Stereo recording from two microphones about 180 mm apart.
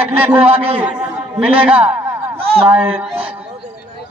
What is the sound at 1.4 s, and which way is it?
A man's voice, 10° right (ahead or behind).